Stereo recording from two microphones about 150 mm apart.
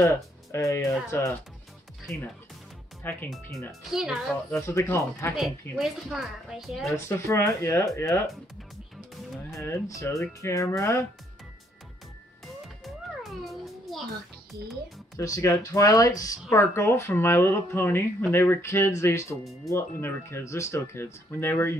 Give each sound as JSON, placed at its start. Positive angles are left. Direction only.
{"t": 0.0, "sound": "speech", "side_deg": 20}
{"t": 3.0, "sound": "speech", "side_deg": 15}
{"t": 3.9, "sound": "a woman's voice", "side_deg": -5}
{"t": 4.5, "sound": "speech", "side_deg": 15}
{"t": 5.3, "sound": "a woman's voice", "side_deg": -5}
{"t": 6.9, "sound": "speech", "side_deg": 20}
{"t": 9.5, "sound": "speech", "side_deg": 20}
{"t": 12.8, "sound": "music", "side_deg": 0}
{"t": 15.1, "sound": "speech", "side_deg": 20}